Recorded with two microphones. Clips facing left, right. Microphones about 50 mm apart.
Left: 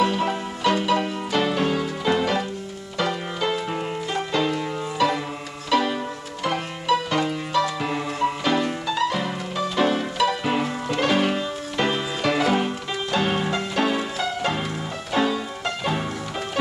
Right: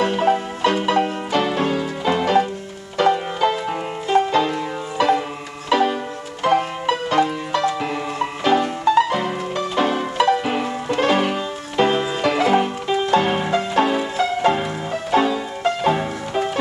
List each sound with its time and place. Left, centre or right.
0.0 s music: right
3.0 s banjo: centre
4.3 s music: centre
5.7 s music: centre
9.8 s music: centre